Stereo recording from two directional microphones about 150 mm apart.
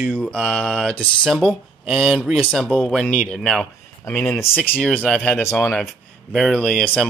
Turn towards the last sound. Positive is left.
turn(degrees=5)  # may be behind; listen again after turning